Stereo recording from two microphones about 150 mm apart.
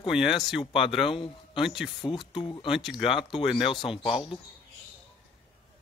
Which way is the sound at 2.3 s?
35° left (ahead or behind).